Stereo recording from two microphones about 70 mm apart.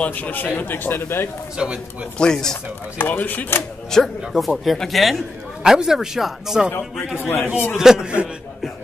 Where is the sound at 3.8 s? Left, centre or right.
Centre.